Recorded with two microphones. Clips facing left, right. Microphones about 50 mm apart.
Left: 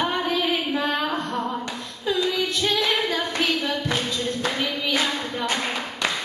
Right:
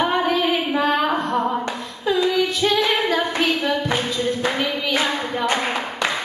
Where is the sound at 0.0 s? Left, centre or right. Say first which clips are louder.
Right 4 dB; centre.